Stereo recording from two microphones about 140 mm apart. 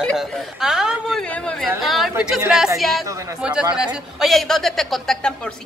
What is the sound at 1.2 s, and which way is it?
Speech, 5° left (ahead or behind).